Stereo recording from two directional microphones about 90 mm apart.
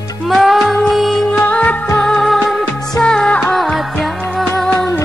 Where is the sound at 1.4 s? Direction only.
15° left (ahead or behind).